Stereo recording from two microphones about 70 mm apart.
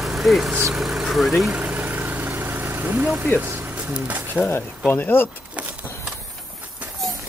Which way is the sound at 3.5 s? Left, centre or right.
Right.